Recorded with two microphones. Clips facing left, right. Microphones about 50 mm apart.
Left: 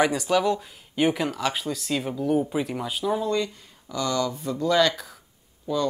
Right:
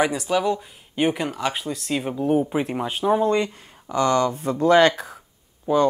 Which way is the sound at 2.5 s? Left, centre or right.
Right.